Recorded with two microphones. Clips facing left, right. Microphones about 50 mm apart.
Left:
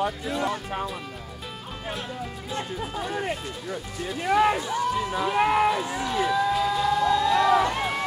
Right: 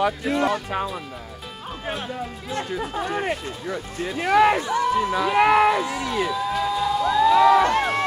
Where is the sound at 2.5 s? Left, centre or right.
Right.